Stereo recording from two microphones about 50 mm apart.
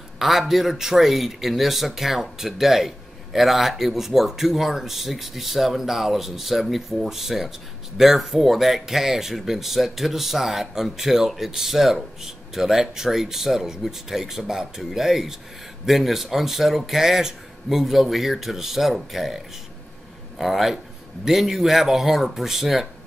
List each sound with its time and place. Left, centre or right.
0.2 s speech: centre